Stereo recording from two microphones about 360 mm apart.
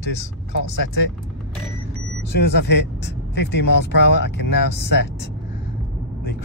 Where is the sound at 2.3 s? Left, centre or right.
Left.